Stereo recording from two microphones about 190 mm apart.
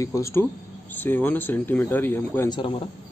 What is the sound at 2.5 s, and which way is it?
Speech, 25° left (ahead or behind).